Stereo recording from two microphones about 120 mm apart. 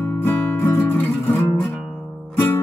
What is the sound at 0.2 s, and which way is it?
Music, 15° left (ahead or behind).